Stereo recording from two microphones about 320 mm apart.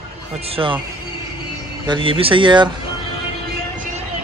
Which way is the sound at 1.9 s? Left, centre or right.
Centre.